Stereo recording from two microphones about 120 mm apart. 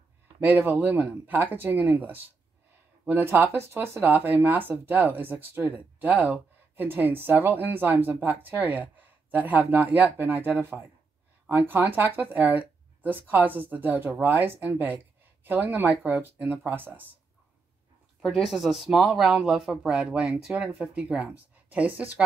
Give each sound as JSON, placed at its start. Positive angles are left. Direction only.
{"t": 0.4, "sound": "speech", "side_deg": -15}
{"t": 18.2, "sound": "speech", "side_deg": 0}